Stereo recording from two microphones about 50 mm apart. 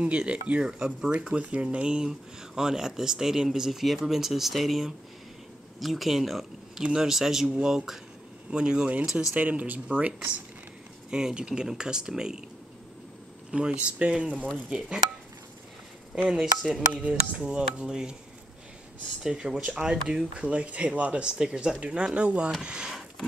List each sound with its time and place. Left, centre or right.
0.0 s speech: right; by 6.4 s centre
6.8 s speech: centre
11.1 s speech: centre
13.5 s speech: centre
16.2 s speech: centre
16.9 s speech: right
19.2 s speech: centre
21.2 s speech: centre